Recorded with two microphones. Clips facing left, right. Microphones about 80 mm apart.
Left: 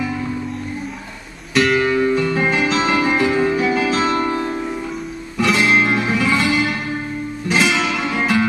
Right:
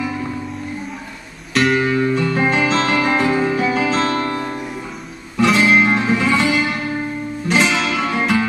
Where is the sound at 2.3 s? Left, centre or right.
Centre.